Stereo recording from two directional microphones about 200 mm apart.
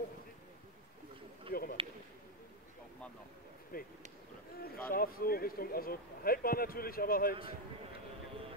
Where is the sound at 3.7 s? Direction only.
45° left (ahead or behind).